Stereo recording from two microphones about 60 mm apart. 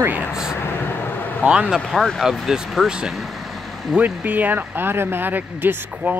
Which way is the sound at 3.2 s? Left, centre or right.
Centre.